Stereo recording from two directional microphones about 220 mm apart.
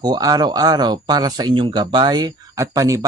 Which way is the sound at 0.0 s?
15° right (ahead or behind).